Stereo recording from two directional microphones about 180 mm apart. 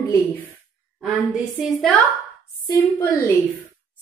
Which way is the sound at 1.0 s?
5° right (ahead or behind).